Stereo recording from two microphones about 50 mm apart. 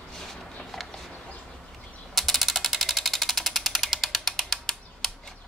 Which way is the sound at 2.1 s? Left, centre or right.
Centre.